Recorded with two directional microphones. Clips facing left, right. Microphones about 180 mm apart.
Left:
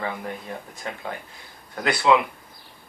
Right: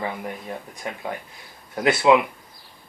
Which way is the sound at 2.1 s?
20° right (ahead or behind).